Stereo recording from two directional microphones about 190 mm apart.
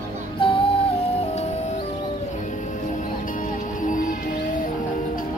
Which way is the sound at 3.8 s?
45° left (ahead or behind).